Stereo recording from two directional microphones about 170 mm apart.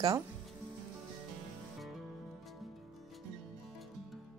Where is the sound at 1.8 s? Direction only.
Centre (ahead or behind).